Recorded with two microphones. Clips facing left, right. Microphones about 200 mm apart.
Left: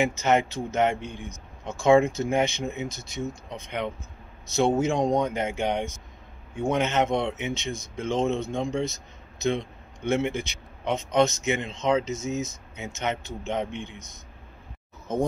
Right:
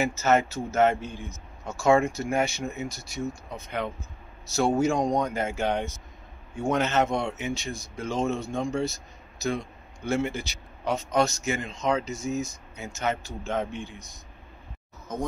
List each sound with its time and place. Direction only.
0.0 s speech: 15° left (ahead or behind)
3.2 s speech: centre (ahead or behind)
4.6 s speech: 20° left (ahead or behind)